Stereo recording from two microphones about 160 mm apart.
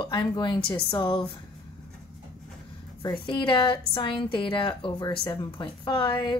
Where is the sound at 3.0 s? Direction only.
30° left (ahead or behind).